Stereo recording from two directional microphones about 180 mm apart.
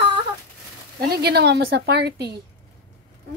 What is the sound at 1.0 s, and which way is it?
A woman's voice, 60° right (ahead or behind).